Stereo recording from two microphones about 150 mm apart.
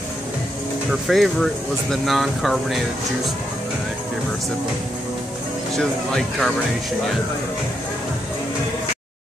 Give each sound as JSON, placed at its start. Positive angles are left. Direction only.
{"t": 1.0, "sound": "speech", "side_deg": 0}
{"t": 5.8, "sound": "speech", "side_deg": 5}